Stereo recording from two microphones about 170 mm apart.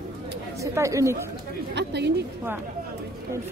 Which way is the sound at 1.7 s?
80° right.